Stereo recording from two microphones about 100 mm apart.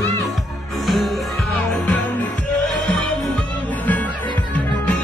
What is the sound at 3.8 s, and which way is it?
Music, 15° left (ahead or behind).